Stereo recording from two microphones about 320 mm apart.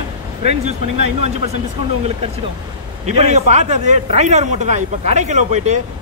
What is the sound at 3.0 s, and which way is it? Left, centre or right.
Speech, right.